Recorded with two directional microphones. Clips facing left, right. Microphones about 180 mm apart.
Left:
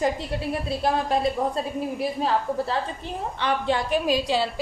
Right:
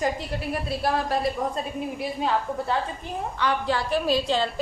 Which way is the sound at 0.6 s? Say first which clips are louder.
Left 1 dB; 20° left (ahead or behind).